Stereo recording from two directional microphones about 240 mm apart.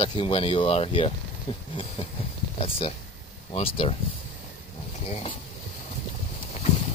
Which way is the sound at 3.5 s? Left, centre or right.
Left.